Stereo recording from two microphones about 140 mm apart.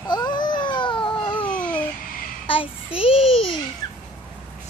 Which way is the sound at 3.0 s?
45° left (ahead or behind).